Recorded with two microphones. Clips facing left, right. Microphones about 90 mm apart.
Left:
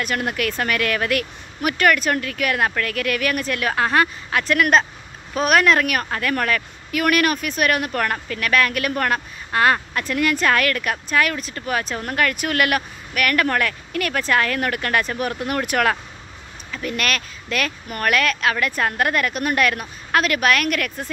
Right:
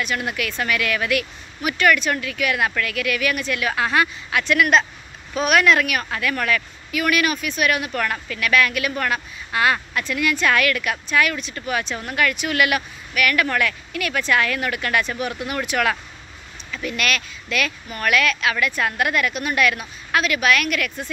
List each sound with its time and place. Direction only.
0.0 s a woman's voice: 45° left (ahead or behind)